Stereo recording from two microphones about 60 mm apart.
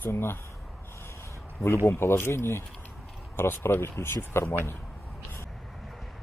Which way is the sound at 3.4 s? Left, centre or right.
Left.